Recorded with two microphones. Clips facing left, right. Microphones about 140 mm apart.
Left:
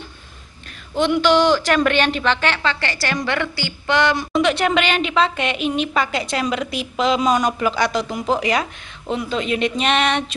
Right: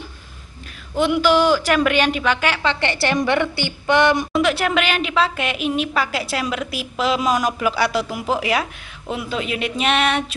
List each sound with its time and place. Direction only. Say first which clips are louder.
0.9 s a woman's voice: even; 5° right (ahead or behind)
2.7 s a woman's voice: right 4 dB; 20° right (ahead or behind)
4.3 s a woman's voice: left 1 dB; centre (ahead or behind)